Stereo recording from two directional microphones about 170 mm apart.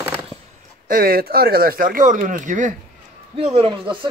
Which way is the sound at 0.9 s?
60° right (ahead or behind).